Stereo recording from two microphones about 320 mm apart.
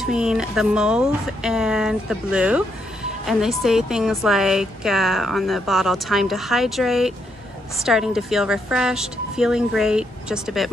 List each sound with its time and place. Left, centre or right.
0.0 s a woman's voice: centre